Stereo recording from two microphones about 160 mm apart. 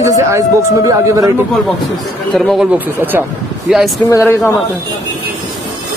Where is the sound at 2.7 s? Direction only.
10° right (ahead or behind).